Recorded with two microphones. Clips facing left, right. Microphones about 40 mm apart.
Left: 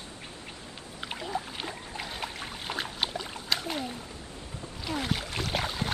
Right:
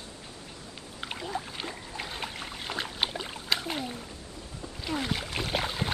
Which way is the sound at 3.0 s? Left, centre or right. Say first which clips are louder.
Right 1 dB; centre.